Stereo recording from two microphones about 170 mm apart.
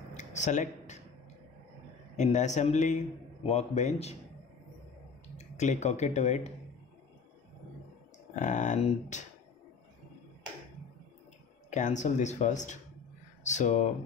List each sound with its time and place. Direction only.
0.1 s a sound: 45° left (ahead or behind)
2.1 s speech: 45° left (ahead or behind)
5.4 s speech: 45° left (ahead or behind)
8.4 s speech: 45° left (ahead or behind)
11.7 s speech: 45° left (ahead or behind)